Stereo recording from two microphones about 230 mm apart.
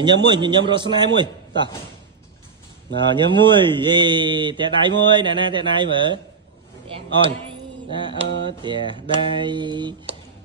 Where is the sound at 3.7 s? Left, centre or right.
Centre.